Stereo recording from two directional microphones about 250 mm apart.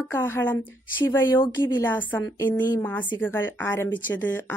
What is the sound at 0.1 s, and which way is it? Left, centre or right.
Speech, centre.